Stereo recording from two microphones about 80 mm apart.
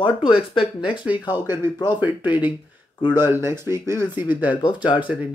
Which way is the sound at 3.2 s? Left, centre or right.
Right.